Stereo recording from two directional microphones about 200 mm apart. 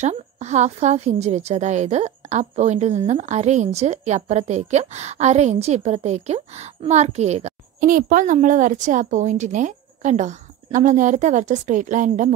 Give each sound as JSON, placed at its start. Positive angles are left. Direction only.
{"t": 0.0, "sound": "a woman's voice", "side_deg": -35}